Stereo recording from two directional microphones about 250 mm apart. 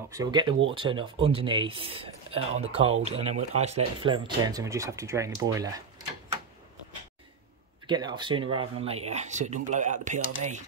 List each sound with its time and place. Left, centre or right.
0.1 s speech: centre
7.8 s speech: centre